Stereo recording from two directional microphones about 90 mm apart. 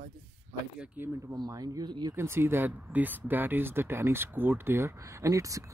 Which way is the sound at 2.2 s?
25° right (ahead or behind).